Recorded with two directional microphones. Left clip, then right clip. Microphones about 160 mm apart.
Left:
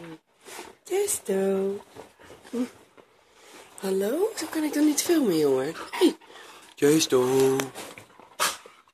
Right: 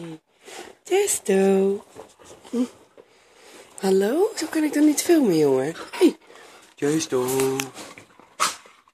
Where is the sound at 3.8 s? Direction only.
50° right (ahead or behind).